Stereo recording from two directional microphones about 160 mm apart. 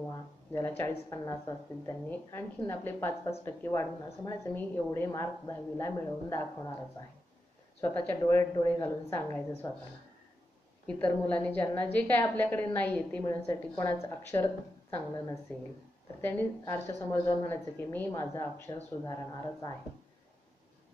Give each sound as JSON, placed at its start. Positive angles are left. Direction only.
{"t": 0.1, "sound": "a woman's voice", "side_deg": 20}
{"t": 7.8, "sound": "a woman's voice", "side_deg": 10}
{"t": 10.9, "sound": "a woman's voice", "side_deg": 10}